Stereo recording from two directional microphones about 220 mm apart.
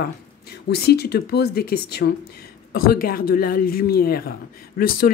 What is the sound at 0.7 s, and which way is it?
Speech, 45° left (ahead or behind).